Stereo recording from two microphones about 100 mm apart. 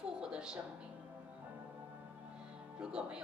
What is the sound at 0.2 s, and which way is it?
Music, 10° right (ahead or behind).